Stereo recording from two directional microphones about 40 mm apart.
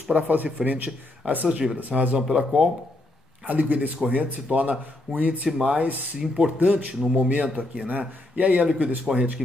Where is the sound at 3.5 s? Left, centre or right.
Right.